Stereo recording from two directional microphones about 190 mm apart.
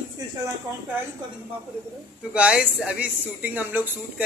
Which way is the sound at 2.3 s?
5° right (ahead or behind).